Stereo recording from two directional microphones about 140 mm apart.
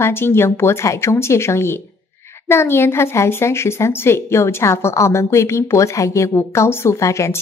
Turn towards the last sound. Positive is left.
turn(degrees=20)  # may be behind; listen again after turning